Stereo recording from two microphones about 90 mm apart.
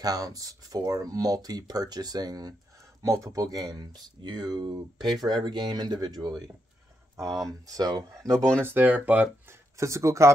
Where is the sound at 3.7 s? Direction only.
50° right (ahead or behind).